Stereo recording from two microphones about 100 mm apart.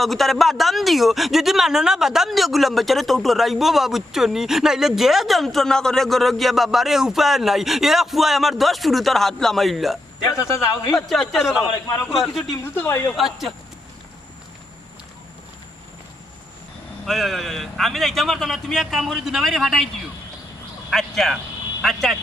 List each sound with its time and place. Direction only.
0.0 s speech: centre (ahead or behind)
12.7 s a woman's voice: 25° left (ahead or behind)
13.1 s speech: centre (ahead or behind)
17.0 s speech: centre (ahead or behind)
20.9 s speech: 5° left (ahead or behind)